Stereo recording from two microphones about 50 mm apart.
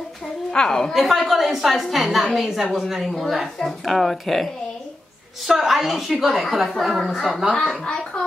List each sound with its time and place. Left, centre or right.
0.5 s a woman's voice: centre
0.9 s a woman's voice: centre
5.5 s a woman's voice: centre
7.8 s speech: centre